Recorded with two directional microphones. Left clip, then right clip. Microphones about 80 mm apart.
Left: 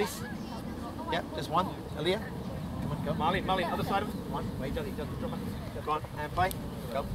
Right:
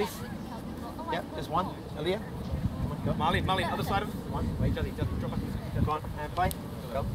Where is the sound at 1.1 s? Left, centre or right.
Centre.